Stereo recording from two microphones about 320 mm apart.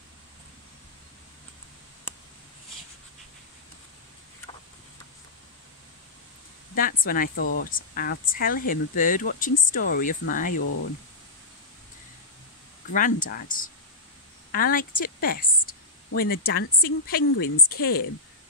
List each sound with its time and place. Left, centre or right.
6.7 s a sound: left
7.0 s speech: left
12.9 s a woman's voice: left